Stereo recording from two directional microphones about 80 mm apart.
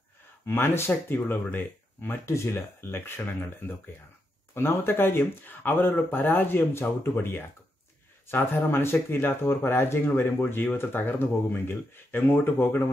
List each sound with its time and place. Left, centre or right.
0.5 s speech: left